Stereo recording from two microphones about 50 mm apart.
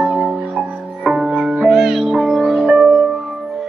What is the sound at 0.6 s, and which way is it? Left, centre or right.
Music, centre.